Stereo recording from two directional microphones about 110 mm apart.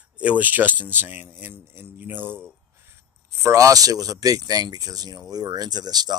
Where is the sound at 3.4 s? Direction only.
30° right (ahead or behind).